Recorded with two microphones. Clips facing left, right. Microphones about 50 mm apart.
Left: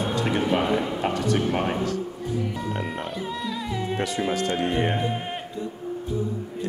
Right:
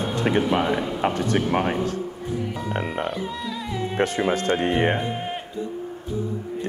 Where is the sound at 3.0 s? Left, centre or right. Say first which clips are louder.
Right 2 dB; centre.